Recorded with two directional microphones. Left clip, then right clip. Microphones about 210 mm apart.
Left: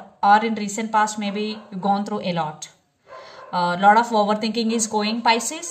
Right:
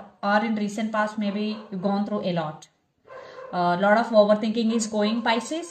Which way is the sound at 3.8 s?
40° left (ahead or behind).